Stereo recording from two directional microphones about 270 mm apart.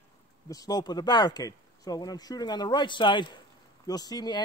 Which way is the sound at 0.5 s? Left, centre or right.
Centre.